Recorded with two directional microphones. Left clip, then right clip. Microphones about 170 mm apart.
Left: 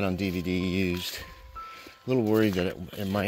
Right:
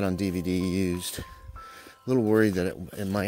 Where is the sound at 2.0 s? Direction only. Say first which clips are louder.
Right 2 dB; 45° right (ahead or behind).